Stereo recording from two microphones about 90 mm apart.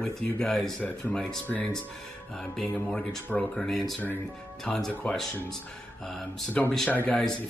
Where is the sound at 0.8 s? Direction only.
20° left (ahead or behind).